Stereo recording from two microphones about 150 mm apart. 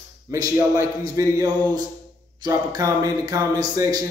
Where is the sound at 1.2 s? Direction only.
20° right (ahead or behind).